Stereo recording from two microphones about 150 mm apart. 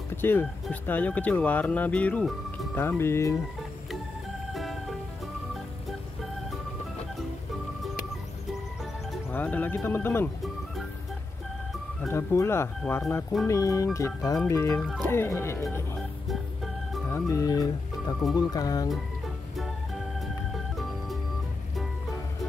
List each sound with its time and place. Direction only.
0.1 s speech: 15° left (ahead or behind)
4.6 s music: centre (ahead or behind)
9.3 s speech: 10° left (ahead or behind)
12.1 s speech: 15° left (ahead or behind)
13.5 s speech: 20° left (ahead or behind)
14.8 s speech: 5° left (ahead or behind)
16.3 s organ: centre (ahead or behind)
17.1 s speech: 20° left (ahead or behind)
20.5 s music: centre (ahead or behind)